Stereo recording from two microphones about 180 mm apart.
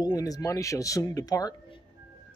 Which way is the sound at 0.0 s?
20° left (ahead or behind).